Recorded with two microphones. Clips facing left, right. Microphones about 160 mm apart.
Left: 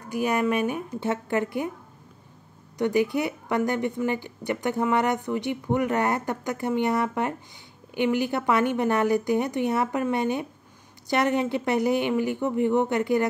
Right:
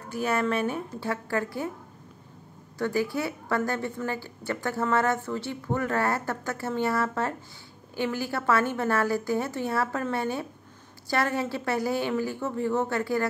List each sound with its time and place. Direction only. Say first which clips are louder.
0.1 s speech: left 3 dB; 15° left (ahead or behind)
2.8 s a woman's voice: left 4 dB; 20° left (ahead or behind)